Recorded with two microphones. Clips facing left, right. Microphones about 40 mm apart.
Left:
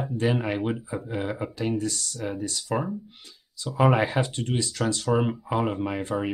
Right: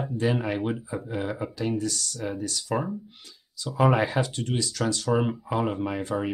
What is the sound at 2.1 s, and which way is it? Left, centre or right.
Speech, centre.